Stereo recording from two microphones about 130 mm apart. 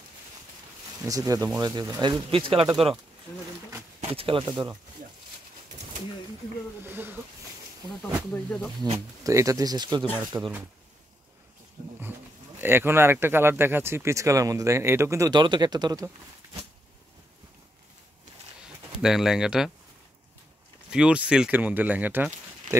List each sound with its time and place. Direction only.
1.0 s speech: 25° right (ahead or behind); by 2.7 s 45° right (ahead or behind)
4.1 s speech: 45° right (ahead or behind)
6.8 s speech: 15° right (ahead or behind)
8.3 s speech: 10° left (ahead or behind)
9.2 s speech: 25° right (ahead or behind)
10.3 s speech: 15° right (ahead or behind)
12.5 s speech: 15° right (ahead or behind)
15.3 s speech: 35° right (ahead or behind)
18.9 s speech: 5° right (ahead or behind)
20.9 s speech: 10° right (ahead or behind)